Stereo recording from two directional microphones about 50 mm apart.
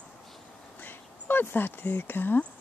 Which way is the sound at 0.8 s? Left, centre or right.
Left.